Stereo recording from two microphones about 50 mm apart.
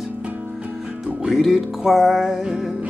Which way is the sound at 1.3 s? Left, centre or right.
Centre.